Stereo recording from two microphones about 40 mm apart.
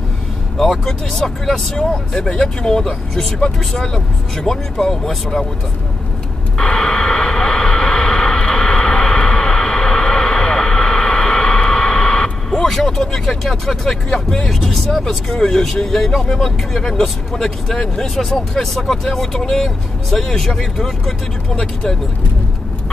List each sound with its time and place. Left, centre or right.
0.6 s speech: centre
2.1 s speech: centre
6.6 s radio: centre
12.6 s speech: centre